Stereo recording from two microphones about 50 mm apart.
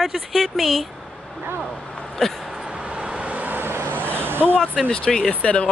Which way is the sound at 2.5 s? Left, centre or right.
Centre.